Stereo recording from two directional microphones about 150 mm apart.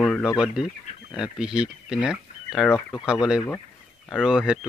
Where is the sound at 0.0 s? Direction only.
Centre (ahead or behind).